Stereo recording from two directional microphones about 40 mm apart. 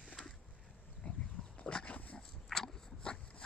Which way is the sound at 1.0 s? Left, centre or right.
Left.